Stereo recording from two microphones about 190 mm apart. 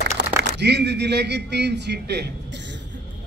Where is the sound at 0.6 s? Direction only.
65° right (ahead or behind).